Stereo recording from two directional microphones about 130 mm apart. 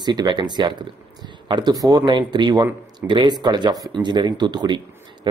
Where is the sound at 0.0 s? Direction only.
35° right (ahead or behind).